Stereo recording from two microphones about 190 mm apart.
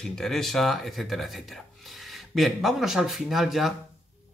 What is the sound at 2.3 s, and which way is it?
Speech, centre (ahead or behind).